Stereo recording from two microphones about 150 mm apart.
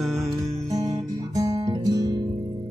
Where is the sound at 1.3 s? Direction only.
25° right (ahead or behind).